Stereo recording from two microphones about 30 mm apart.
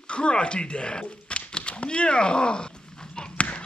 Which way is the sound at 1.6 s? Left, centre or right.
Left.